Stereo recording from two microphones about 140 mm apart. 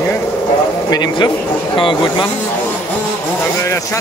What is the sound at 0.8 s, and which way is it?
Speech, 30° left (ahead or behind).